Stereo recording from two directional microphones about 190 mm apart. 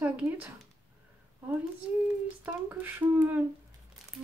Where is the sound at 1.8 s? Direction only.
5° right (ahead or behind).